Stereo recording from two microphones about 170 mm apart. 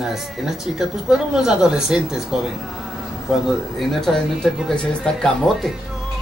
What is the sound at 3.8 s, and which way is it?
Speech, centre (ahead or behind).